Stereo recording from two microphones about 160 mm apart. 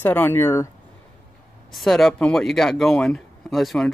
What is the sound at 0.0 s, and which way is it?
Speech, 10° left (ahead or behind).